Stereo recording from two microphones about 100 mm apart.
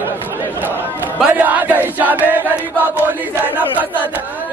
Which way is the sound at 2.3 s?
20° right (ahead or behind).